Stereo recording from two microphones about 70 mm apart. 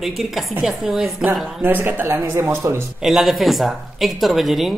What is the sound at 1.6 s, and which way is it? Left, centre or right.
Speech, right.